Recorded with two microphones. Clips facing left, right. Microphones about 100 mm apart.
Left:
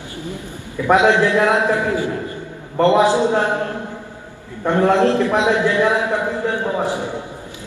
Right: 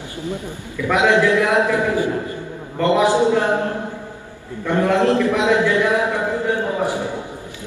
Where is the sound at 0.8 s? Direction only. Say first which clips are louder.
Left 5 dB; 35° left (ahead or behind).